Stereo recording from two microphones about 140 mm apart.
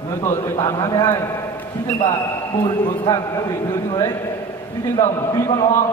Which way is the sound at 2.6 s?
30° left (ahead or behind).